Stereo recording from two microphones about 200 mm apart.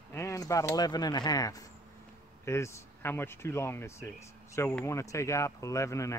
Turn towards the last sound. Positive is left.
turn(degrees=15)  # may be behind; listen again after turning